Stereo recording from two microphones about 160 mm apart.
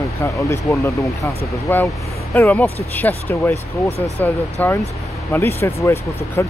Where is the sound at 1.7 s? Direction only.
10° left (ahead or behind).